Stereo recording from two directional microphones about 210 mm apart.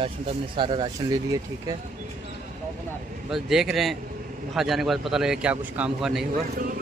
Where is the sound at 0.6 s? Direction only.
25° right (ahead or behind).